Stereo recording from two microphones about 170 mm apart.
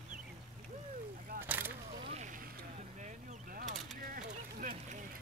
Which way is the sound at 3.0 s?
45° right (ahead or behind).